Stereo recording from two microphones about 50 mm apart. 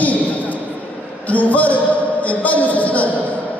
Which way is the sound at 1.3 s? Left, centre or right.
Left.